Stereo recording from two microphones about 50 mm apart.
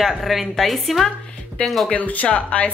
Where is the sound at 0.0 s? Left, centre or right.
Centre.